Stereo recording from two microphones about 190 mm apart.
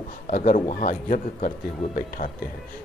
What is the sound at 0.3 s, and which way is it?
Speech, 40° left (ahead or behind).